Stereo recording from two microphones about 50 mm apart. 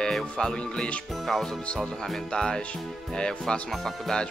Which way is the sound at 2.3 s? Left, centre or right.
Centre.